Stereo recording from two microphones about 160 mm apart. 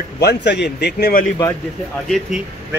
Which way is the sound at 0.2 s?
90° left.